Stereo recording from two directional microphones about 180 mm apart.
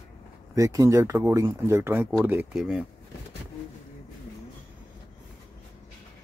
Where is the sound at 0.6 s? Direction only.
15° right (ahead or behind).